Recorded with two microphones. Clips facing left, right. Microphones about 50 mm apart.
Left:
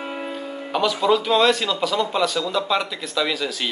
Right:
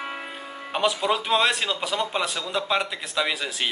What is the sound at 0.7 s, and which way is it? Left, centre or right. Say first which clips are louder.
Speech: left 4 dB; right.